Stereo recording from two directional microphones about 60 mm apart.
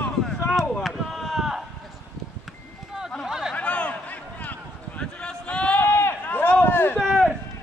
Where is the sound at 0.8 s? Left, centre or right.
Centre.